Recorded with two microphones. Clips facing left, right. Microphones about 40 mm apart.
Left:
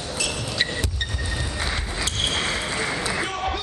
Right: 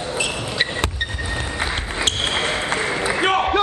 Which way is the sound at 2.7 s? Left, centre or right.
Right.